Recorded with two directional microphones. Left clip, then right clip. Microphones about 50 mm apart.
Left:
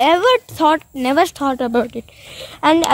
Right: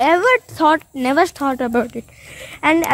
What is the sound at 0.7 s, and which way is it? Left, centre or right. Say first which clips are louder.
A woman's voice: even; left.